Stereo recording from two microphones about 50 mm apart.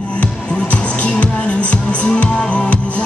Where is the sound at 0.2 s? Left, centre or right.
Left.